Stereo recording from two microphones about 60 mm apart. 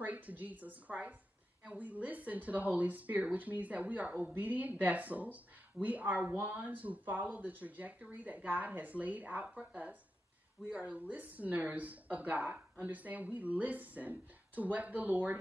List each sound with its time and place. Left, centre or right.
0.0 s speech: right
10.7 s speech: right